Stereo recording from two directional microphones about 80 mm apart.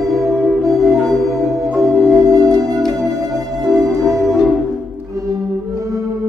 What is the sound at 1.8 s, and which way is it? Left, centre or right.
Organ, centre.